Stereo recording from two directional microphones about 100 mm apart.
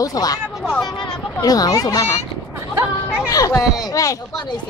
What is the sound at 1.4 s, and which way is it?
Speech, 40° left (ahead or behind).